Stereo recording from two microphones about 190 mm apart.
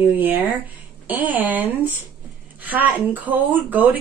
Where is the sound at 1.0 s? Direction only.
10° right (ahead or behind).